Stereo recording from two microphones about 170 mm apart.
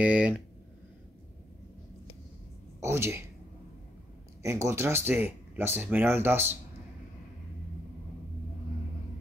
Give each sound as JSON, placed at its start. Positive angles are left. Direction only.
{"t": 0.0, "sound": "speech", "side_deg": -5}
{"t": 2.8, "sound": "speech", "side_deg": -15}
{"t": 4.4, "sound": "speech", "side_deg": -15}